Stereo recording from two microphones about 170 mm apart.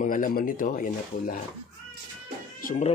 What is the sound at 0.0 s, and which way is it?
Speech, 50° left (ahead or behind).